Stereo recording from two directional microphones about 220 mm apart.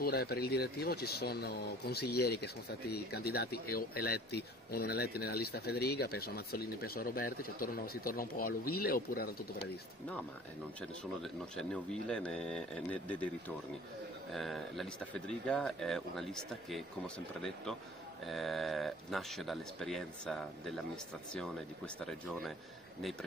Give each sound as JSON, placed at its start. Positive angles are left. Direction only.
{"t": 0.0, "sound": "speech", "side_deg": 45}
{"t": 10.8, "sound": "speech", "side_deg": 5}
{"t": 14.3, "sound": "speech", "side_deg": 0}